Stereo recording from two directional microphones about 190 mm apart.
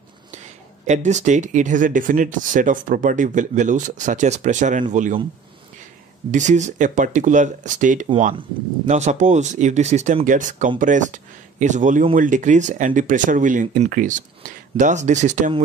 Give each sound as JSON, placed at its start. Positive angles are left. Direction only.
{"t": 0.8, "sound": "speech", "side_deg": -40}
{"t": 6.3, "sound": "speech", "side_deg": -40}